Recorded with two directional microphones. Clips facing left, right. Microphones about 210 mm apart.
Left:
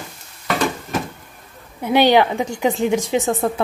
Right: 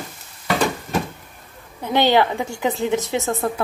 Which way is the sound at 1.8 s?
15° left (ahead or behind).